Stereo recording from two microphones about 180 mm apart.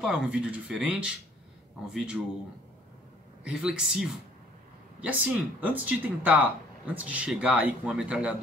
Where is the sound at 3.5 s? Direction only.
5° right (ahead or behind).